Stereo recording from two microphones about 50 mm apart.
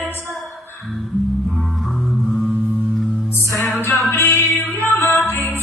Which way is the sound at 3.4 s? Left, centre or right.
Left.